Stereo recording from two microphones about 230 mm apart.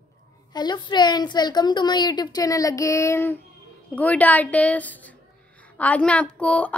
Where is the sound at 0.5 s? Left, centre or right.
Centre.